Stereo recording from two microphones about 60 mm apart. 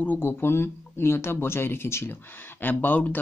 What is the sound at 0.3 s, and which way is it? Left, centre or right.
Speech, left.